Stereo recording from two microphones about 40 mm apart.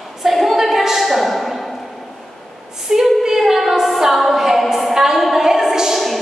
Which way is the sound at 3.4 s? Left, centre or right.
Centre.